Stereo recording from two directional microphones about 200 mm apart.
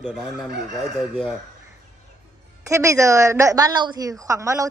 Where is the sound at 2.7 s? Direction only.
15° right (ahead or behind).